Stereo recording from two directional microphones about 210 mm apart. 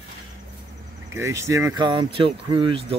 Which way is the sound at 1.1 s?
15° right (ahead or behind).